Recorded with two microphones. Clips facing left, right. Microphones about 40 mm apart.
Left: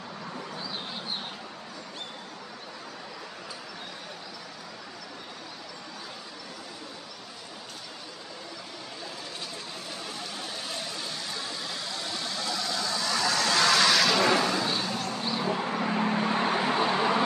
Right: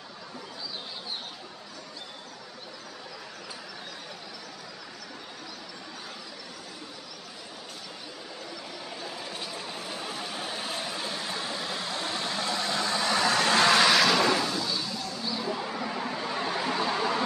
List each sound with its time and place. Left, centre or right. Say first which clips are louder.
9.0 s a sound: right 2 dB; centre
13.8 s vehicle: right 1 dB; centre
14.6 s vehicle: left 3 dB; left